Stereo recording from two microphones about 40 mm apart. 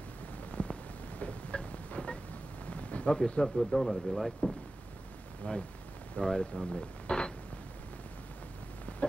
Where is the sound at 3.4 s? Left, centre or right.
Centre.